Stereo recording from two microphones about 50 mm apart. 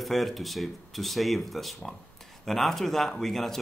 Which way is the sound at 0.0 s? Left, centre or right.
Centre.